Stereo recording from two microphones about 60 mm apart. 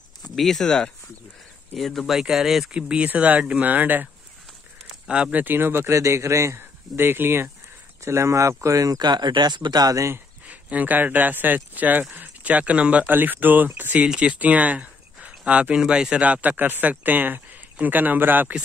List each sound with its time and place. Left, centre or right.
0.2 s a sound: centre
0.7 s speech: centre
1.8 s speech: centre
2.9 s speech: right
5.0 s speech: centre
5.4 s speech: right
6.6 s speech: right
8.0 s speech: right
9.8 s speech: right
10.4 s speech: right
13.0 s speech: right
14.0 s speech: centre; by 18.5 s right